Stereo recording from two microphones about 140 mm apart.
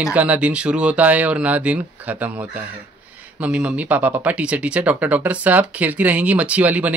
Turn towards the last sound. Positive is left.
turn(degrees=-10)  # may be behind; listen again after turning